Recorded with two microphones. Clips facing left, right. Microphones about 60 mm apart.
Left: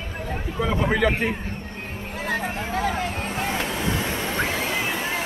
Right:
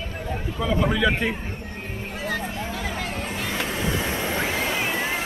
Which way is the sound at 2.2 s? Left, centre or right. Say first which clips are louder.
Left 2 dB; left.